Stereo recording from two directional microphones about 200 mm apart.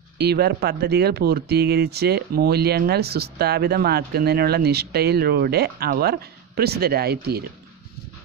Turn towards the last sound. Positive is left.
turn(degrees=-50)  # may be behind; listen again after turning